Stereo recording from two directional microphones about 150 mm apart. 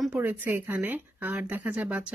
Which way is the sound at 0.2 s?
15° right (ahead or behind).